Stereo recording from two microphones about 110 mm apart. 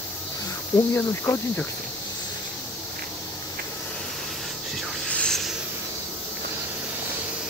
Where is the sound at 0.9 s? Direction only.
20° left (ahead or behind).